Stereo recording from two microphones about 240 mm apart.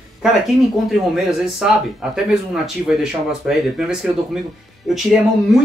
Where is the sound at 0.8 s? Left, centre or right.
Centre.